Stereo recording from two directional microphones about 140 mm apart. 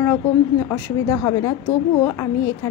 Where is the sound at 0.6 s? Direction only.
25° left (ahead or behind).